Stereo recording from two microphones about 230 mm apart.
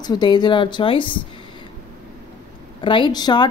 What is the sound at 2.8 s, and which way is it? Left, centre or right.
Speech, left.